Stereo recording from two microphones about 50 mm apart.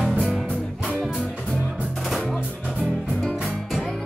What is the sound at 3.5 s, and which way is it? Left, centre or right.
Music, centre.